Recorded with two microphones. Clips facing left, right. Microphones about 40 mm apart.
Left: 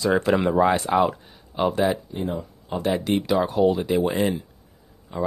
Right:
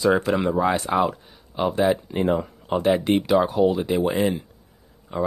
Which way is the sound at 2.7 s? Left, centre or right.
Centre.